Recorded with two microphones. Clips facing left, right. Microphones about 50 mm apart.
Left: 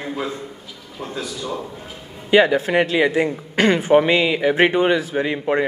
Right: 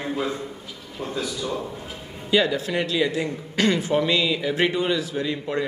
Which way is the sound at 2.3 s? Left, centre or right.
Left.